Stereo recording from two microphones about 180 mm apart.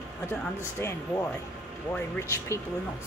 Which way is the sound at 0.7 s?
15° left (ahead or behind).